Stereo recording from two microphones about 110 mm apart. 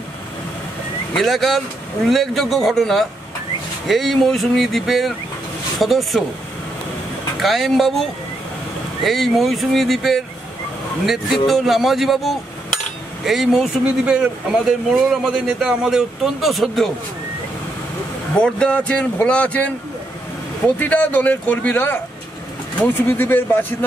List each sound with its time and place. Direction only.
1.1 s a man's voice: centre (ahead or behind)
7.3 s a man's voice: centre (ahead or behind)
9.0 s a man's voice: centre (ahead or behind)
11.4 s a man's voice: centre (ahead or behind)
18.4 s speech: 10° left (ahead or behind)